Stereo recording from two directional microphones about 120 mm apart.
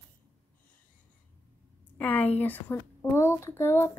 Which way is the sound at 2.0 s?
15° left (ahead or behind).